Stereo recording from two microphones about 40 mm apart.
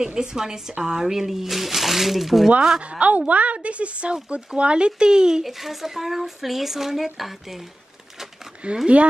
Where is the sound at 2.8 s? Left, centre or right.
Right.